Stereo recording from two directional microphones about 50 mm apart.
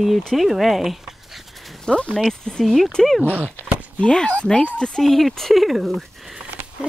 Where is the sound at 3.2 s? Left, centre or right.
Left.